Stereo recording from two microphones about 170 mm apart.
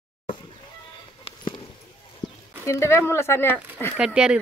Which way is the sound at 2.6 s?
15° left (ahead or behind).